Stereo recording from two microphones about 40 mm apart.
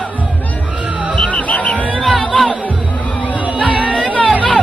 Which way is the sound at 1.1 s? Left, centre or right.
Left.